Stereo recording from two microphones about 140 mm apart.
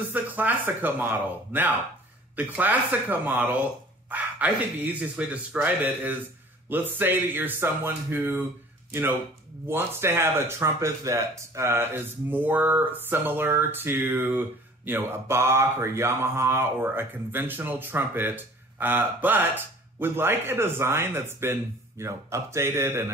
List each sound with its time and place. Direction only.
0.1 s speech: 10° right (ahead or behind)
9.7 s speech: 15° right (ahead or behind)